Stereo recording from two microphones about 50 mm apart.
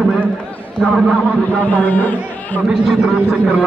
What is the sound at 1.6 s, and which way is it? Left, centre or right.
Speech, left.